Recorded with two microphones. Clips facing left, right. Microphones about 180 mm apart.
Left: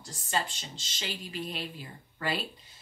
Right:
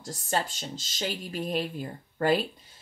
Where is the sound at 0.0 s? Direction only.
45° right (ahead or behind).